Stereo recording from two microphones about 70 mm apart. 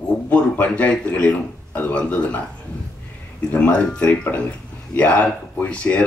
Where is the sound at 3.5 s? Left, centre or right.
Left.